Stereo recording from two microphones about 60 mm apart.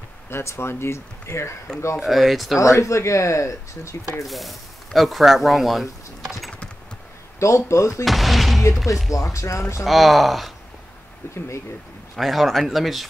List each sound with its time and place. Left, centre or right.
0.3 s speech: left
2.0 s speech: centre
2.6 s speech: left
4.3 s speech: centre
7.3 s speech: left
8.0 s music: centre
9.1 s speech: left
9.8 s speech: centre
11.3 s speech: left
12.2 s speech: centre